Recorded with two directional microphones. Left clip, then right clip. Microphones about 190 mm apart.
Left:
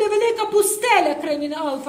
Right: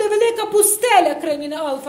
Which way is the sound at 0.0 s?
45° right (ahead or behind).